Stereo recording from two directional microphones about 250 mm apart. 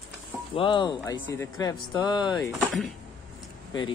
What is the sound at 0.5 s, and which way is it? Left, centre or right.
Speech, centre.